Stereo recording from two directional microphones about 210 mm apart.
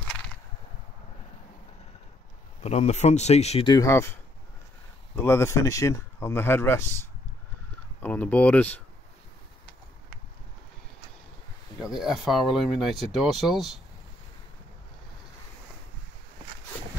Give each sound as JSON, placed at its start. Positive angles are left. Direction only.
{"t": 2.6, "sound": "speech", "side_deg": 30}
{"t": 11.8, "sound": "speech", "side_deg": 0}